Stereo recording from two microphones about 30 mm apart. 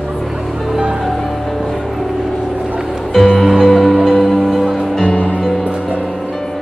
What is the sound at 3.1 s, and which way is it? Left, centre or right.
Music, centre.